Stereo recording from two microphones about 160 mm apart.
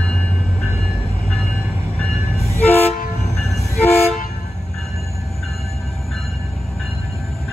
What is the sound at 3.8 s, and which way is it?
Train, 40° left (ahead or behind).